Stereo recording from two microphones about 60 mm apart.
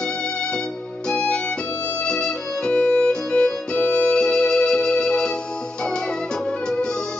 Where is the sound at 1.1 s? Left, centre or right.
Centre.